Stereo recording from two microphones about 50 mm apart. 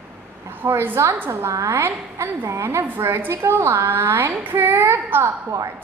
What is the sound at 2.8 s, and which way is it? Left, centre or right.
Speech, right.